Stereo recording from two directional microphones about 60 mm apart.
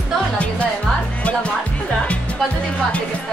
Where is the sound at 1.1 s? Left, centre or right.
Left.